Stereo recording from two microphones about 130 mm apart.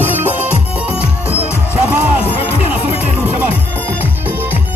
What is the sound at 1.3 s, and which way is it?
Music, 10° right (ahead or behind).